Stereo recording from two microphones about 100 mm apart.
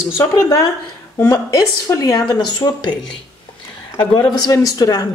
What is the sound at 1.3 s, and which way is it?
Speech, 30° left (ahead or behind).